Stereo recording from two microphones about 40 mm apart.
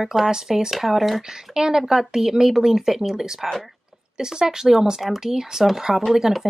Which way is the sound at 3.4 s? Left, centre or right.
Centre.